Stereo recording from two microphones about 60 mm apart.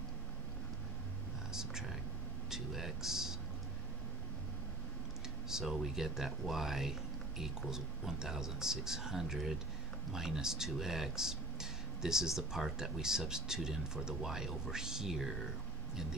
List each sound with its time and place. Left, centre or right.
1.5 s whispering: centre
2.5 s a sound: centre
5.5 s speech: centre